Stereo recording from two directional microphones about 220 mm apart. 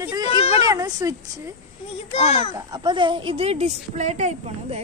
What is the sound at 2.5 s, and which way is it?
A woman's voice, 20° right (ahead or behind).